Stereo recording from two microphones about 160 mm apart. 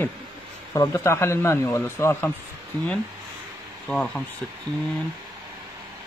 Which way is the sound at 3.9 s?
5° left (ahead or behind).